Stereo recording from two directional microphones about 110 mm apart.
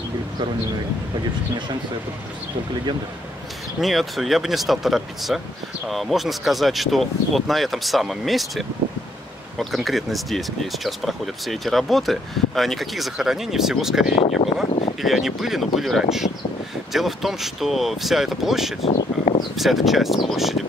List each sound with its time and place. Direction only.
3.8 s speech: centre (ahead or behind)
14.4 s speech: 65° left (ahead or behind)
15.0 s speech: centre (ahead or behind)
18.8 s a sound: 85° left
19.5 s speech: centre (ahead or behind)